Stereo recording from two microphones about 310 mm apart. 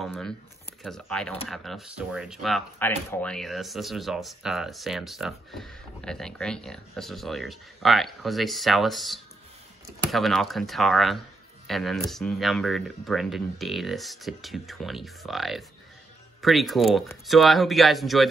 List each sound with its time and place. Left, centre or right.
0.0 s speech: centre